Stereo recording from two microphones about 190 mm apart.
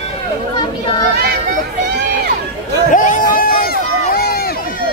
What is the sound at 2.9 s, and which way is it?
Run, 45° left (ahead or behind).